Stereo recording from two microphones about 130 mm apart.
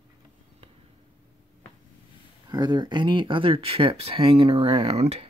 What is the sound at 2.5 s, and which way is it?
Speech, 30° right (ahead or behind).